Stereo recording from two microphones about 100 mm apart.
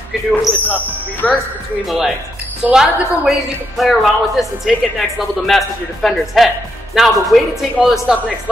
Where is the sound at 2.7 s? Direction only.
5° right (ahead or behind).